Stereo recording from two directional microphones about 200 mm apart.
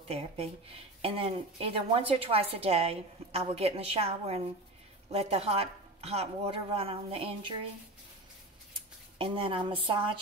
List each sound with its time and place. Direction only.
0.1 s speech: 30° right (ahead or behind)
9.2 s speech: 25° right (ahead or behind)